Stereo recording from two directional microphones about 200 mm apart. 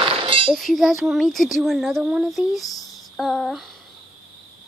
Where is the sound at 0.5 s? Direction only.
Centre (ahead or behind).